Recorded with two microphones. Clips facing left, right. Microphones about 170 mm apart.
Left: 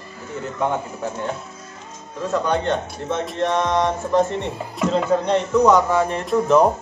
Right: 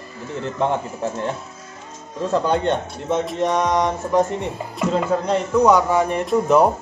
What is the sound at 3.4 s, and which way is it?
Speech, 15° right (ahead or behind).